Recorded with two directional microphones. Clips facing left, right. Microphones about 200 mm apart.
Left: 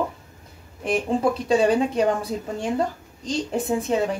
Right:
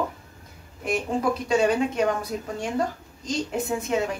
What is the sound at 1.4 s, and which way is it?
Speech, 35° left (ahead or behind).